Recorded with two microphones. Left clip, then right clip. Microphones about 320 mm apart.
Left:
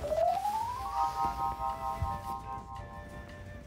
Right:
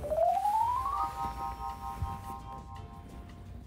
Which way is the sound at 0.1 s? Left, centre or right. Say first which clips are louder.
Right 2 dB; centre.